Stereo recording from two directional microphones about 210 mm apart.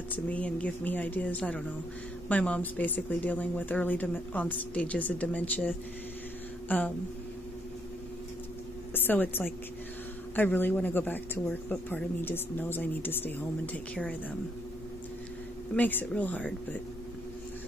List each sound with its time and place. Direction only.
0.1 s speech: 5° left (ahead or behind)
8.9 s a woman's voice: 10° left (ahead or behind)
15.7 s speech: 10° left (ahead or behind)